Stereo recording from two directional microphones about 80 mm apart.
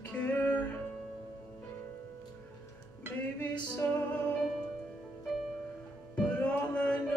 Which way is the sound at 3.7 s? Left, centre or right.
Centre.